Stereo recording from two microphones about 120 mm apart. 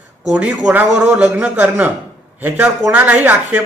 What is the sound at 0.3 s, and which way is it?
A man's voice, 10° right (ahead or behind).